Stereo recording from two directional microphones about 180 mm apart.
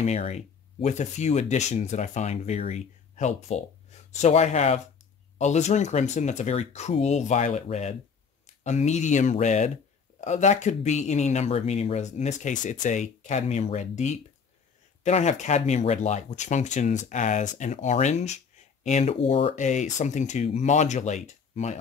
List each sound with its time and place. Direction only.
0.0 s speech: 40° left (ahead or behind)